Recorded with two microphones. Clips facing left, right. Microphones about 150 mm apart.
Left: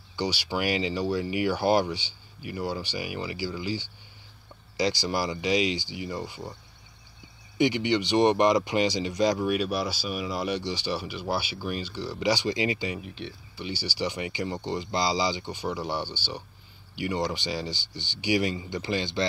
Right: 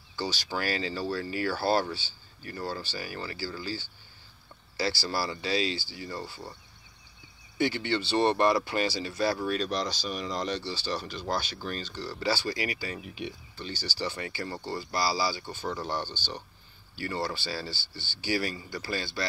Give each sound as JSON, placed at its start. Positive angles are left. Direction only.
{"t": 0.1, "sound": "speech", "side_deg": 15}
{"t": 7.5, "sound": "speech", "side_deg": 15}
{"t": 13.0, "sound": "speech", "side_deg": -5}
{"t": 13.6, "sound": "speech", "side_deg": 15}